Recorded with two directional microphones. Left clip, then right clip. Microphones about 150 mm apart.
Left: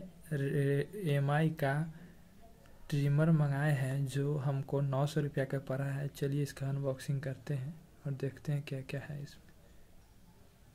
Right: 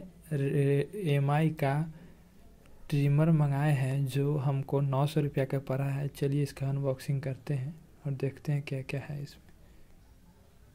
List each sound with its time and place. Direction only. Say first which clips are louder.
0.3 s speech: right 5 dB; 10° right (ahead or behind)
2.9 s speech: right 4 dB; 10° right (ahead or behind)